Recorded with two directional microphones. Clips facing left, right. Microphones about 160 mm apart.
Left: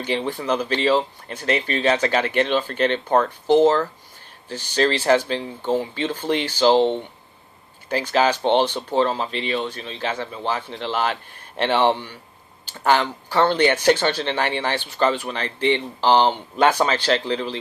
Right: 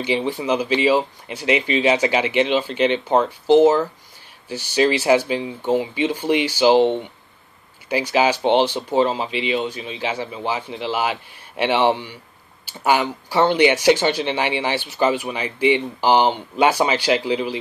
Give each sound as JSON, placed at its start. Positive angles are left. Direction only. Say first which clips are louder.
{"t": 0.0, "sound": "speech", "louder": "right 3 dB", "side_deg": -10}